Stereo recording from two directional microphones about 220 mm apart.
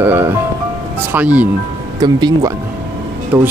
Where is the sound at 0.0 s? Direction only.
10° right (ahead or behind).